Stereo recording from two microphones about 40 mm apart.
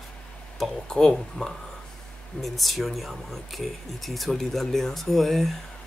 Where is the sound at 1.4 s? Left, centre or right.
Left.